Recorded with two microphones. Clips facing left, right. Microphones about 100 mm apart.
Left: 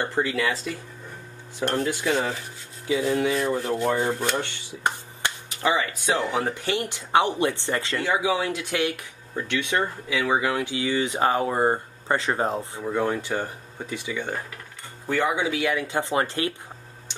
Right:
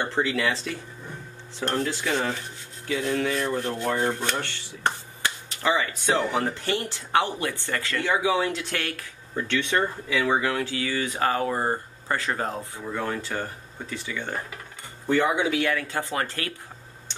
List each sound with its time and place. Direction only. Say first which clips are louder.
0.1 s speech: even; 10° left (ahead or behind)
1.6 s speech: left 2 dB; 5° left (ahead or behind)
4.4 s speech: left 1 dB; 15° left (ahead or behind)
15.4 s speech: even; centre (ahead or behind)
15.7 s speech: left 3 dB; 20° left (ahead or behind)